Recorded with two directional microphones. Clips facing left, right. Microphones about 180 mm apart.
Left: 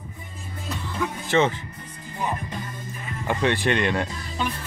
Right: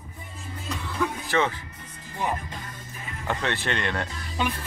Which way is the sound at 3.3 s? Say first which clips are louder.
Left 6 dB; 15° left (ahead or behind).